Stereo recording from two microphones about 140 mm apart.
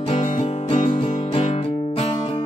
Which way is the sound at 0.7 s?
45° left (ahead or behind).